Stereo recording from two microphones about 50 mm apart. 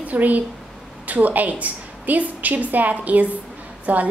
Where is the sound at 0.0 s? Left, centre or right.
Right.